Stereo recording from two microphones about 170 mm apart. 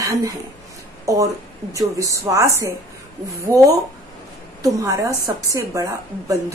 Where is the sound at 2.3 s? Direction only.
15° right (ahead or behind).